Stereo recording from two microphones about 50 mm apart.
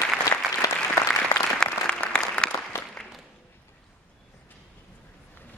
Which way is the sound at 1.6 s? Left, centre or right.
Centre.